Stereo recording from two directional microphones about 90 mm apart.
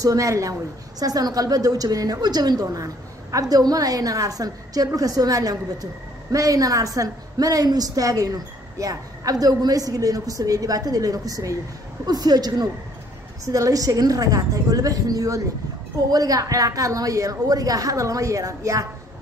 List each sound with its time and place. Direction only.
0.0 s a woman's voice: 40° right (ahead or behind)